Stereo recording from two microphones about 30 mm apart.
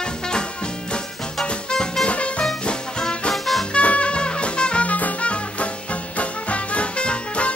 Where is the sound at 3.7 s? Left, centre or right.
Left.